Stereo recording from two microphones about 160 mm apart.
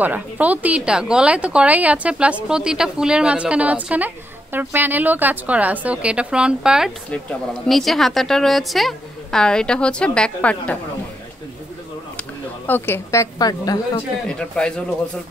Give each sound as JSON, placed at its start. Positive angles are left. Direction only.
{"t": 0.0, "sound": "a woman's voice", "side_deg": -10}
{"t": 12.2, "sound": "speech", "side_deg": 10}
{"t": 14.2, "sound": "a woman's voice", "side_deg": 5}